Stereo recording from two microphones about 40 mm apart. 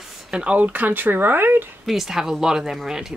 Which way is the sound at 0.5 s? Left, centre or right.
Right.